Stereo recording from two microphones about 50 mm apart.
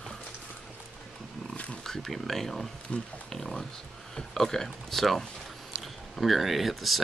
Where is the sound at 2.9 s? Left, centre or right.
Left.